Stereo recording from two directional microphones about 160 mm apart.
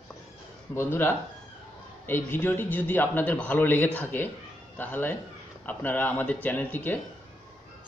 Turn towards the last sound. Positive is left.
turn(degrees=10)  # may be behind; listen again after turning